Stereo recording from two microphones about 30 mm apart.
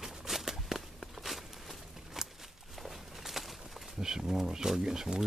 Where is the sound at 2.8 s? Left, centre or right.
Centre.